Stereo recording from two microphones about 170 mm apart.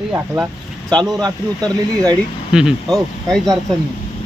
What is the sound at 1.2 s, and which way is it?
Speech, 25° right (ahead or behind).